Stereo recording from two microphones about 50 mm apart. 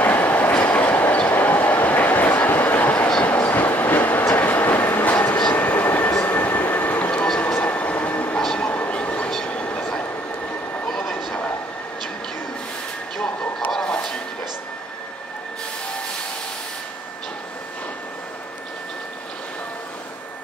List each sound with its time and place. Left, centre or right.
0.0 s train: left
1.3 s a sound: left
3.3 s train: left
5.1 s vehicle: left
5.9 s train: left
10.9 s vehicle: centre
13.2 s vehicle: centre